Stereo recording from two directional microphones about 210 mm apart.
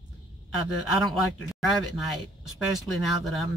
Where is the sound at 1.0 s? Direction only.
Centre (ahead or behind).